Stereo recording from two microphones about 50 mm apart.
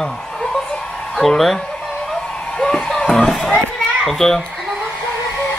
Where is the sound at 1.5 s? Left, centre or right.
Centre.